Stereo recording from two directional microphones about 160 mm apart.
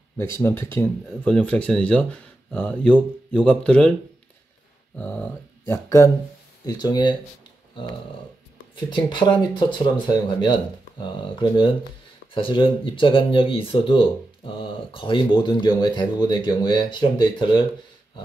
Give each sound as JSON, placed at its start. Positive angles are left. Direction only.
{"t": 0.2, "sound": "speech", "side_deg": 15}
{"t": 4.9, "sound": "dog", "side_deg": 10}
{"t": 6.6, "sound": "speech", "side_deg": 25}
{"t": 8.7, "sound": "speech", "side_deg": 30}